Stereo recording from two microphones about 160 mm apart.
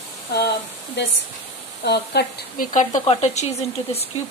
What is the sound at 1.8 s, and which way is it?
Speech, 90° left.